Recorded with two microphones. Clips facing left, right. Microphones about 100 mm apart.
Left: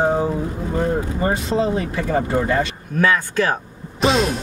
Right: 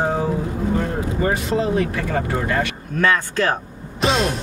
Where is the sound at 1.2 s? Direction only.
25° left (ahead or behind).